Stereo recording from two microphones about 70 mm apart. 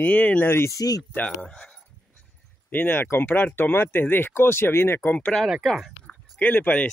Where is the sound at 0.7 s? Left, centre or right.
Left.